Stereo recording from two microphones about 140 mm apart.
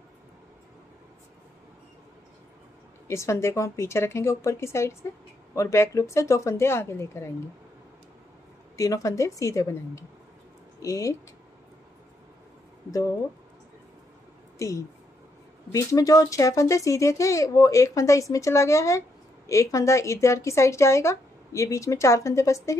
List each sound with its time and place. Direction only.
3.1 s speech: 20° left (ahead or behind)
8.7 s speech: 25° left (ahead or behind)
14.6 s speech: 20° left (ahead or behind)